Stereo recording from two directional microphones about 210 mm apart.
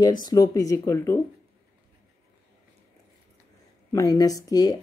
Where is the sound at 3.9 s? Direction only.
15° left (ahead or behind).